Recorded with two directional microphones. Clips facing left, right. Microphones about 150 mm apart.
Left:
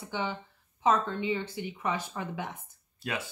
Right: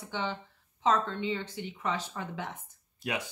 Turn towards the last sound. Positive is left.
turn(degrees=-15)  # may be behind; listen again after turning